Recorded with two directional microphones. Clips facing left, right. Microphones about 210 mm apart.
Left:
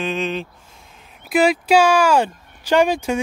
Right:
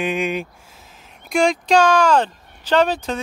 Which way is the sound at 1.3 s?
5° left (ahead or behind).